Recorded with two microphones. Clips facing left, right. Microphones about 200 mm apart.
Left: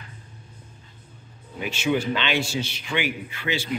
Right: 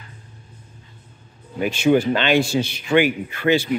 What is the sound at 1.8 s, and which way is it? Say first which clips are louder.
A man's voice: right 7 dB; 50° right (ahead or behind).